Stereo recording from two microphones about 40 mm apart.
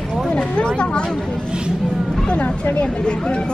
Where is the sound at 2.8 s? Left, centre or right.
Left.